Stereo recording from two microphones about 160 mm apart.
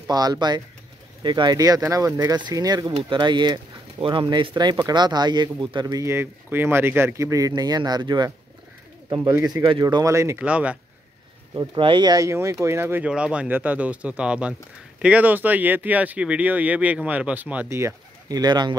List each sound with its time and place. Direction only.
0.0 s speech: 25° right (ahead or behind)
10.4 s speech: 10° right (ahead or behind)
11.5 s speech: 30° right (ahead or behind)